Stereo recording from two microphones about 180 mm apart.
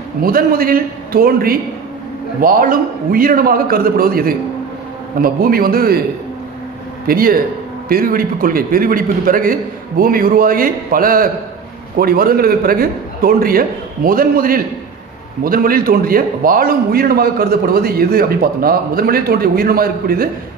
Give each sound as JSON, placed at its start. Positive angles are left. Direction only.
{"t": 0.2, "sound": "a man's voice", "side_deg": -55}
{"t": 7.1, "sound": "a man's voice", "side_deg": -55}